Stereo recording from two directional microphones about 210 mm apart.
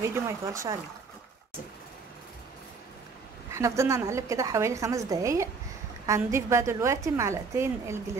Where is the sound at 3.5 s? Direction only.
15° right (ahead or behind).